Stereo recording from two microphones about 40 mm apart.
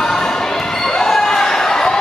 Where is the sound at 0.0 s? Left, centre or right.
Centre.